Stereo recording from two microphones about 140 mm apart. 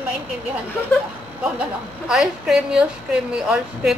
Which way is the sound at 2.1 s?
5° right (ahead or behind).